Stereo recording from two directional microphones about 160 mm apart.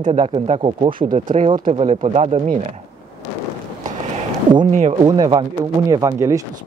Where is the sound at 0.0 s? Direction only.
45° right (ahead or behind).